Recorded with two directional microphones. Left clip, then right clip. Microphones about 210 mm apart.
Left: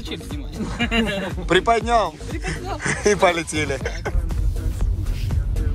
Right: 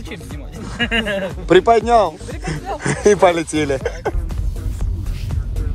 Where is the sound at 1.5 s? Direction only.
20° right (ahead or behind).